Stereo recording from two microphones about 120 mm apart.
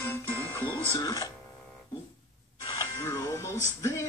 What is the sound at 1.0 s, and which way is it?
Speech, 30° left (ahead or behind).